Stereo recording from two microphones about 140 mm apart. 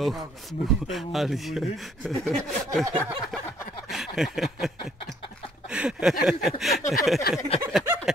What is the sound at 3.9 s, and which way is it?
Speech, centre (ahead or behind).